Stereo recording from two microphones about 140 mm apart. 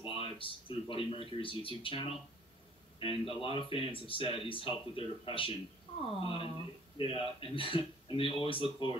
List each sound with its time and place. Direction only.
0.0 s speech: 40° left (ahead or behind)